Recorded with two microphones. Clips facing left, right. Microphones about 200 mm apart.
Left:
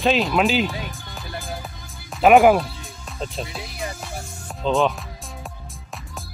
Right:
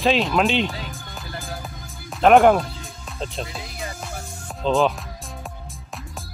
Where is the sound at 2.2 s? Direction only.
5° left (ahead or behind).